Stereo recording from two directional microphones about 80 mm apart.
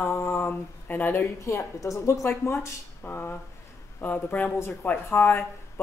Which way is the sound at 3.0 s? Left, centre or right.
Left.